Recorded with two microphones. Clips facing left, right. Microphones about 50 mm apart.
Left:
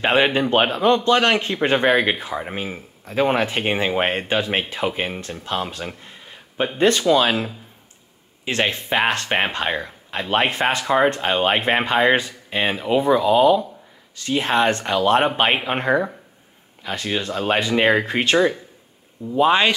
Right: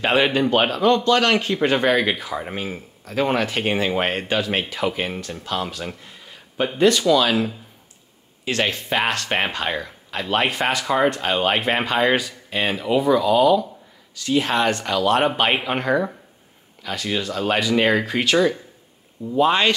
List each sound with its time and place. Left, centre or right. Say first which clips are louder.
0.0 s speech: left 1 dB; left
8.5 s speech: left 1 dB; left
19.3 s speech: left 1 dB; centre